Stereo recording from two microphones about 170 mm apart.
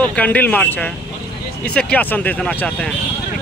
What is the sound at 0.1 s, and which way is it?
Speech, 10° left (ahead or behind).